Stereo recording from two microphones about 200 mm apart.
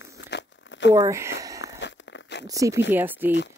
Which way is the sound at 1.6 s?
60° left (ahead or behind).